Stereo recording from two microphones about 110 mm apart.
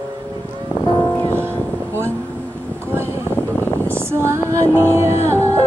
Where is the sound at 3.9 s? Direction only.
25° right (ahead or behind).